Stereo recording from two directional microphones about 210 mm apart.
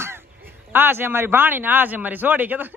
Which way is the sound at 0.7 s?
10° right (ahead or behind).